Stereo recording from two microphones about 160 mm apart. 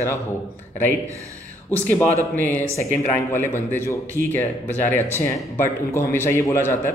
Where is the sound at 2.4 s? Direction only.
10° left (ahead or behind).